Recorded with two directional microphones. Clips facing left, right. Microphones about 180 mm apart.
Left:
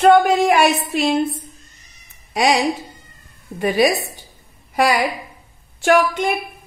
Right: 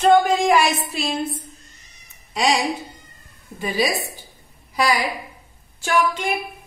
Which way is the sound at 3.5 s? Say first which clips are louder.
Left 6 dB; 60° left (ahead or behind).